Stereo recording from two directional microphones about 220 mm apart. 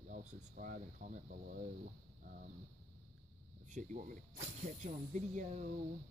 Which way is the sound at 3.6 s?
35° right (ahead or behind).